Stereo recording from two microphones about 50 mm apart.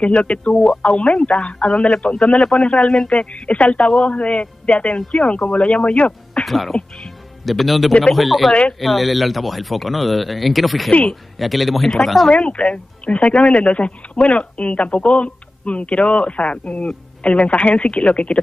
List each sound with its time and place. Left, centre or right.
0.0 s speech: left
6.4 s speech: centre
10.9 s speech: left
11.3 s speech: centre
12.3 s speech: left